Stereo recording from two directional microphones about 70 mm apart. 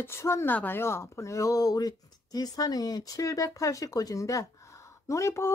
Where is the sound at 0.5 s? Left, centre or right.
Left.